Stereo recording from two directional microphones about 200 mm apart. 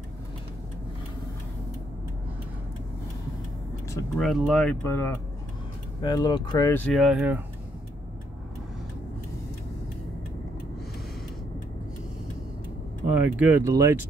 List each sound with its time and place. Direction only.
4.2 s speech: centre (ahead or behind)
4.8 s speech: 10° left (ahead or behind)
6.7 s speech: 5° left (ahead or behind)
13.1 s speech: 10° right (ahead or behind)